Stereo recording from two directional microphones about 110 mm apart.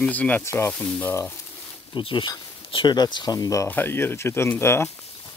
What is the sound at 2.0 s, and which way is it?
Speech, 50° left (ahead or behind).